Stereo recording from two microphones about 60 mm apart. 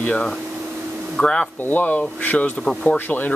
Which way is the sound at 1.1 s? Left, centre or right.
Centre.